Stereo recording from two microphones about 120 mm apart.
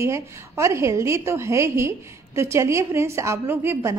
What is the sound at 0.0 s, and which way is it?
A woman's voice, 25° right (ahead or behind).